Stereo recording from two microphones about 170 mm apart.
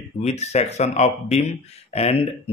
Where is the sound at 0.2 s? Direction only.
40° left (ahead or behind).